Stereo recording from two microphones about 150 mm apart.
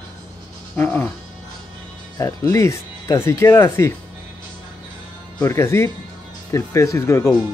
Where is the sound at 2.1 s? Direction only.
20° left (ahead or behind).